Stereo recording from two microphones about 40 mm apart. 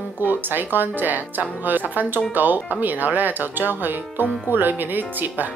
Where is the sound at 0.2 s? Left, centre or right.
Right.